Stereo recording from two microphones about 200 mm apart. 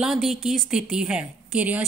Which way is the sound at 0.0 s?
Centre (ahead or behind).